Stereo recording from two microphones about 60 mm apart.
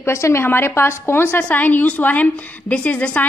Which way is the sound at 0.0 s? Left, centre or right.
Left.